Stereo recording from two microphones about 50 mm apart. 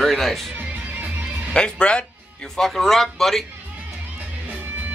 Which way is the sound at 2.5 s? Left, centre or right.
Centre.